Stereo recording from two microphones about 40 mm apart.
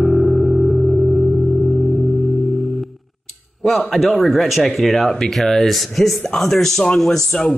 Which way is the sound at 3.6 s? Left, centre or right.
Centre.